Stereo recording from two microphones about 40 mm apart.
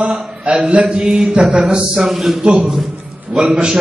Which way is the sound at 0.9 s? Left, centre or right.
Centre.